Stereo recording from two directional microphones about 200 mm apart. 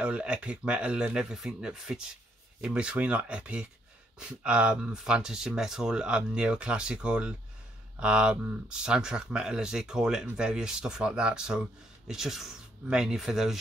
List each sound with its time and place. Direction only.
0.0 s speech: 5° right (ahead or behind)